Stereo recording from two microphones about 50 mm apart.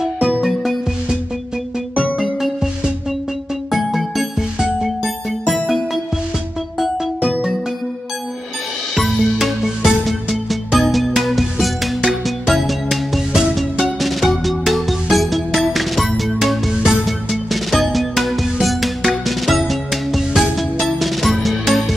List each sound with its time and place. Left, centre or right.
0.0 s music: centre
2.1 s music: centre
8.9 s music: centre